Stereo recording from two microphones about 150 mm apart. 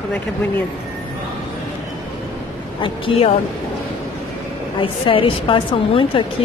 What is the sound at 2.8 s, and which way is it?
Speech, 40° left (ahead or behind).